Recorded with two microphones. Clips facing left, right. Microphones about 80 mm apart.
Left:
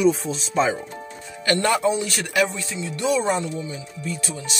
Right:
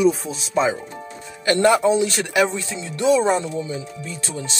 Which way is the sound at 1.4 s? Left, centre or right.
Right.